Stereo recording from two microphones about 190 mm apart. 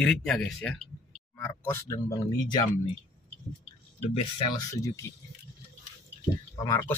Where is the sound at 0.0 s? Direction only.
5° left (ahead or behind).